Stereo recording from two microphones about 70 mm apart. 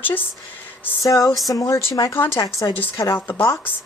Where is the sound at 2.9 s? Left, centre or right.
Left.